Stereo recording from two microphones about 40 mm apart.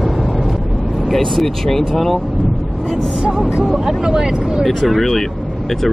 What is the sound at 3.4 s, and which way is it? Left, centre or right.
Speech, centre.